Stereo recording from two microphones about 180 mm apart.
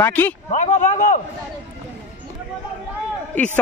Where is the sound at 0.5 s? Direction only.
45° left (ahead or behind).